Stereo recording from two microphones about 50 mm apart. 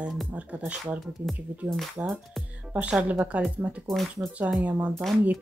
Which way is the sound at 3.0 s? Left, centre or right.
Right.